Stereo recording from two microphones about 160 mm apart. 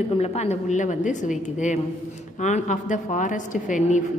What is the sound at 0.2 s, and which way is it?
A woman's voice, 40° left (ahead or behind).